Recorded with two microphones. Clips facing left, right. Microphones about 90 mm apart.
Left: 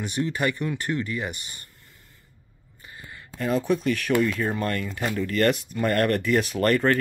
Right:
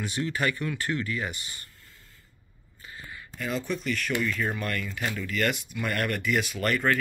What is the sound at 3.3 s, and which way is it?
Speech, 50° left (ahead or behind).